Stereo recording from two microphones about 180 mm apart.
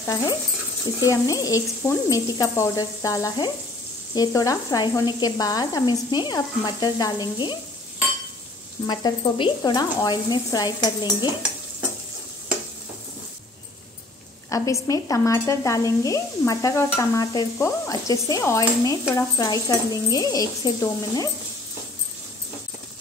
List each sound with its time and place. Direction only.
0.0 s speech: 20° left (ahead or behind)
8.8 s speech: 20° left (ahead or behind)
14.5 s speech: 20° left (ahead or behind)